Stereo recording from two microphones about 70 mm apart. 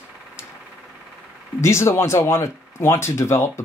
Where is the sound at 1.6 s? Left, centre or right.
Left.